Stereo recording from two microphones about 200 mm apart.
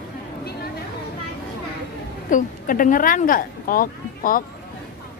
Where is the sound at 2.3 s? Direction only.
45° left (ahead or behind).